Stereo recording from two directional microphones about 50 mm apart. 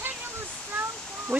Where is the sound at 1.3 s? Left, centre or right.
Right.